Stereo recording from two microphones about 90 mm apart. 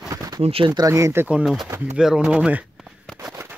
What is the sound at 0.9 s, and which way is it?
Speech, 35° right (ahead or behind).